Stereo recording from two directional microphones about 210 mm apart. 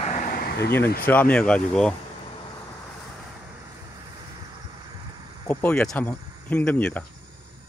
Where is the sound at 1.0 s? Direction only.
10° left (ahead or behind).